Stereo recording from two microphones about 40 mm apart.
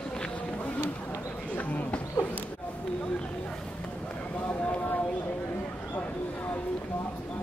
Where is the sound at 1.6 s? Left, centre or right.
Left.